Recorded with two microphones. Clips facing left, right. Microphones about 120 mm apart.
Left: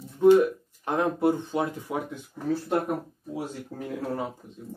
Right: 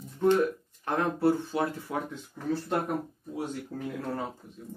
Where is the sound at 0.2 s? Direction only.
10° left (ahead or behind).